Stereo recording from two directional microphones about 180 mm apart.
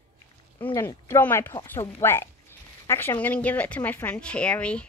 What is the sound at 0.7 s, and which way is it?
Speech, 15° left (ahead or behind).